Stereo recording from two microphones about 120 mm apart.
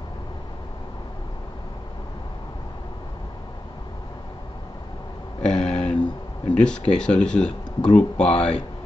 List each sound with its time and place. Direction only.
5.4 s a sound: 5° left (ahead or behind)
6.5 s speech: 5° left (ahead or behind)
8.3 s speech: 60° left (ahead or behind)